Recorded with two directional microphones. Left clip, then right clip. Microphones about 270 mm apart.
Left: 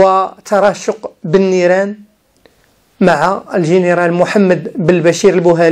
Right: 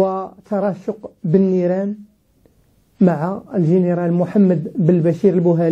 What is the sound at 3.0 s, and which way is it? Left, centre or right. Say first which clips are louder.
Speech: left 9 dB; centre.